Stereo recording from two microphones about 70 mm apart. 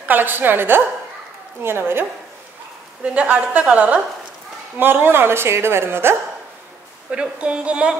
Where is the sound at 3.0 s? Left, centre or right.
Centre.